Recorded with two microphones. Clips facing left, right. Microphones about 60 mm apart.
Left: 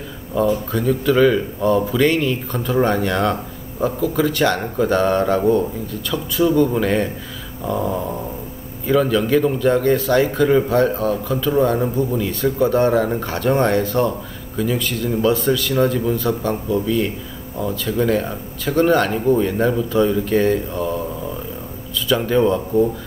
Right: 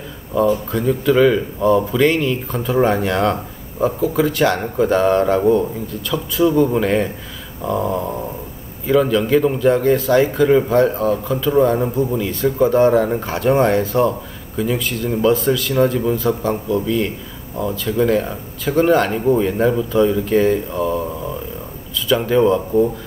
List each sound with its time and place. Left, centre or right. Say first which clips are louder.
0.3 s a man's voice: right 2 dB; centre